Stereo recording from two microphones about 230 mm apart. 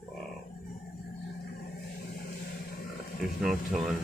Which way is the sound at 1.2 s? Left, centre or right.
Left.